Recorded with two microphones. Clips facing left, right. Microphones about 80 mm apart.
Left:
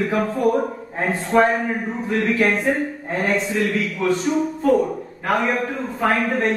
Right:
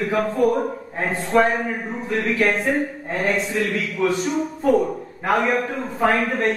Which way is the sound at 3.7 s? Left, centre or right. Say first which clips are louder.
Left 1 dB; centre.